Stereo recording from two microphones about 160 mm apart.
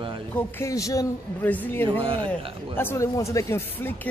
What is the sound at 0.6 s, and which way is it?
A man's voice, 20° left (ahead or behind).